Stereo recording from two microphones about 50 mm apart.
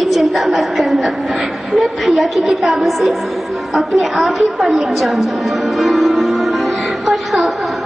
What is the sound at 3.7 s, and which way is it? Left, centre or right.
Music, centre.